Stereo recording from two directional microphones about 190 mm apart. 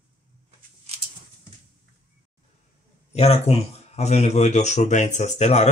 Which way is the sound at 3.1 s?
35° left (ahead or behind).